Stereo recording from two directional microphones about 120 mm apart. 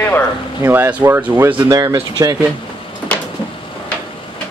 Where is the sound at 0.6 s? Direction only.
20° right (ahead or behind).